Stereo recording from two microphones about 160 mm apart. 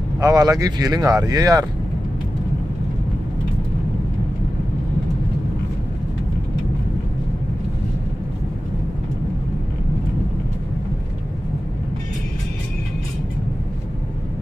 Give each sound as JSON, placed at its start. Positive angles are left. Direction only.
{"t": 0.2, "sound": "speech", "side_deg": -20}